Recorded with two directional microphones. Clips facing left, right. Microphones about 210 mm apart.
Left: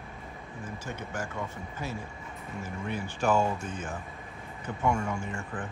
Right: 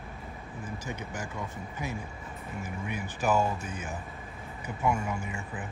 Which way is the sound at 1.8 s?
15° right (ahead or behind).